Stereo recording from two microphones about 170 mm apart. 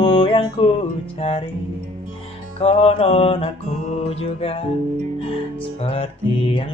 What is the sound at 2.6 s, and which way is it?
Music, 35° left (ahead or behind).